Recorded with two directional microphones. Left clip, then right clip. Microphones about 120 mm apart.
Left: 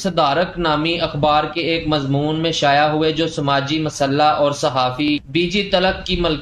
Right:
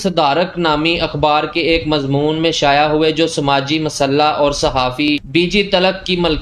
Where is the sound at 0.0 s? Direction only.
40° right (ahead or behind).